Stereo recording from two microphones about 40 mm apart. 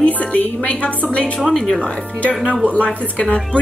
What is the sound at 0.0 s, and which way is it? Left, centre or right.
Music, left.